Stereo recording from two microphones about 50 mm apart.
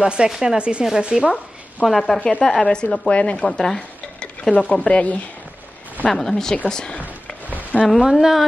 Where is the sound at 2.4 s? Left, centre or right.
Centre.